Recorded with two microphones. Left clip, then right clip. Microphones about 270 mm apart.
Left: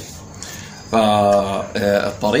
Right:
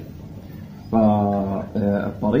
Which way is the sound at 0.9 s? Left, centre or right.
Left.